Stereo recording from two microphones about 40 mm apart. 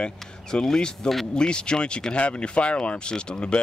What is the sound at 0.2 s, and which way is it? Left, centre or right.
Speech, centre.